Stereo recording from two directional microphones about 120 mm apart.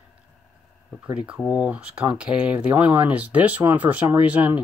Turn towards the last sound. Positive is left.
turn(degrees=-15)  # may be behind; listen again after turning